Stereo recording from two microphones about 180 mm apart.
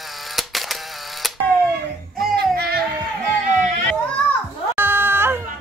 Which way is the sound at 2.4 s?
60° right (ahead or behind).